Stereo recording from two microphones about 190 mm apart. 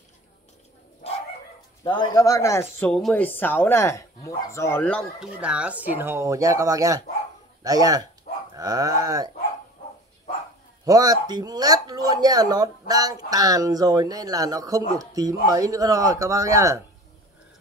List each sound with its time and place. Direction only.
1.8 s speech: 20° left (ahead or behind)
5.2 s speech: 5° right (ahead or behind)
10.9 s speech: 20° right (ahead or behind)